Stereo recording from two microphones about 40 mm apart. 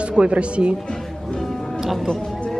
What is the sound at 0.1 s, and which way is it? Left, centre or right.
Speech, right.